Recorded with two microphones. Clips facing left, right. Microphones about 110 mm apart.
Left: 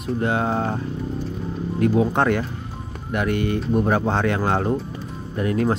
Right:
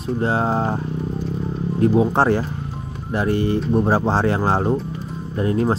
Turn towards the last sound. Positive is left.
turn(degrees=-30)  # may be behind; listen again after turning